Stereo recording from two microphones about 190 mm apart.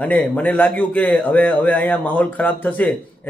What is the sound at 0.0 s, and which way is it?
A man's voice, 10° left (ahead or behind).